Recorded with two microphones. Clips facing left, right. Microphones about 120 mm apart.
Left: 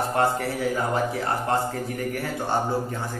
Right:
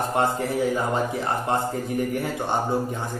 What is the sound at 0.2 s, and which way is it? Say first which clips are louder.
A man's voice: right 1 dB; 20° right (ahead or behind).